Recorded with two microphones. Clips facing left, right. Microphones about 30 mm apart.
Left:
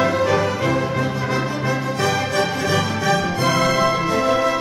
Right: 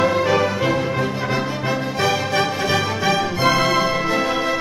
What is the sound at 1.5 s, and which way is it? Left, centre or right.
Music, centre.